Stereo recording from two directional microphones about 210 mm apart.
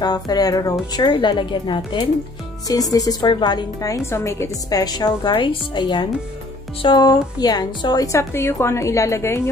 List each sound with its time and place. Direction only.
0.0 s a woman's voice: 20° left (ahead or behind)